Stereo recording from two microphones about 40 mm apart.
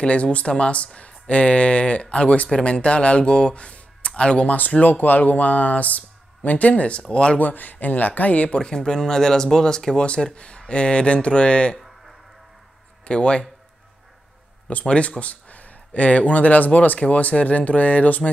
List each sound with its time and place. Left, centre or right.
0.0 s speech: left
4.5 s speech: left
7.3 s speech: left
8.5 s speech: centre
10.0 s speech: left
13.0 s speech: left
14.9 s speech: left